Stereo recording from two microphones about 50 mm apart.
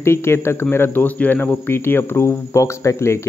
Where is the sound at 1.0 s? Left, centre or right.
Left.